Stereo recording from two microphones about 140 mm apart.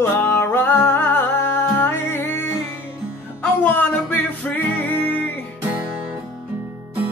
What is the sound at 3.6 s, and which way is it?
Music, 15° left (ahead or behind).